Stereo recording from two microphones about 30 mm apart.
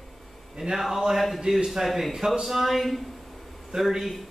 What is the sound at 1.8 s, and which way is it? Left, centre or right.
Speech, centre.